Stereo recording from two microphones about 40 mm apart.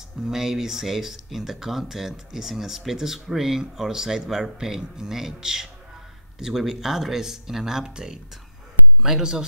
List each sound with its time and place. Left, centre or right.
0.2 s speech: centre